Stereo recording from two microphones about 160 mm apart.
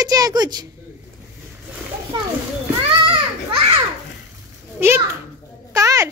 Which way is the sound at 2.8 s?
35° right (ahead or behind).